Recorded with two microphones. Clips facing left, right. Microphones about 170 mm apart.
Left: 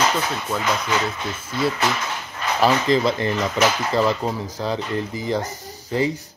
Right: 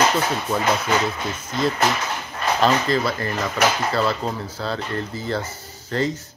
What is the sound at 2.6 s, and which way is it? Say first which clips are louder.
Speech: left 3 dB; 20° left (ahead or behind).